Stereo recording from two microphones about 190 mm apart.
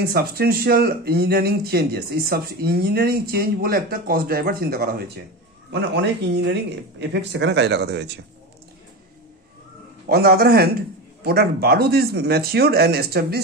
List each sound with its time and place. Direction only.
0.1 s speech: 55° right (ahead or behind)
5.7 s speech: 65° right (ahead or behind)
10.0 s speech: 50° right (ahead or behind)